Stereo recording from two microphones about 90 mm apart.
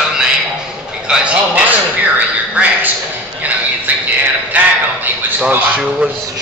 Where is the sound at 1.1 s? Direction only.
15° right (ahead or behind).